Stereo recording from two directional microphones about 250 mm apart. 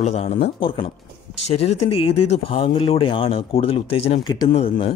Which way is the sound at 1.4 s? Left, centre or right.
Left.